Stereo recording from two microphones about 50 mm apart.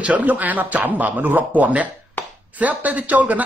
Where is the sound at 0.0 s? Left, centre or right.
Right.